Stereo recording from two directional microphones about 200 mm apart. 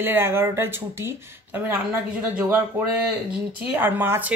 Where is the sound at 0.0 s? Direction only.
10° right (ahead or behind).